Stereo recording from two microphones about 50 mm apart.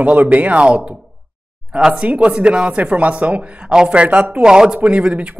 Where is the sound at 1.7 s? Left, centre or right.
Centre.